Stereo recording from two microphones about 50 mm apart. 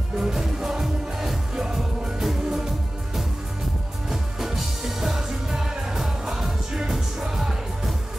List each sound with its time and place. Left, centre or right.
0.2 s music: centre
4.1 s music: centre